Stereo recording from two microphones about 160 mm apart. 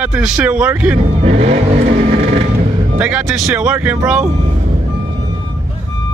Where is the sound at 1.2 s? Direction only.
40° right (ahead or behind).